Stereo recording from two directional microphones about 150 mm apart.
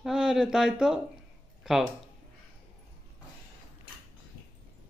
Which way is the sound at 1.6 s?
Centre (ahead or behind).